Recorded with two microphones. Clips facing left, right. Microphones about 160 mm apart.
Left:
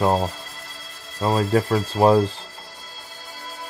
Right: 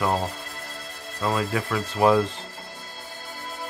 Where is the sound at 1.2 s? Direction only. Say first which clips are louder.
Left 5 dB; 35° left (ahead or behind).